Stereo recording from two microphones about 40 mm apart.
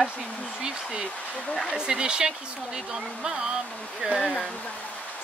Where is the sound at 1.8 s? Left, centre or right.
Right.